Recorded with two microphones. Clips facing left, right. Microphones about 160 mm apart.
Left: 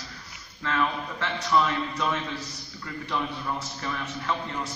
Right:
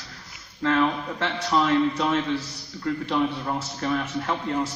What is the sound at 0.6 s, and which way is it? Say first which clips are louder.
A man's voice: right 6 dB; 55° right (ahead or behind).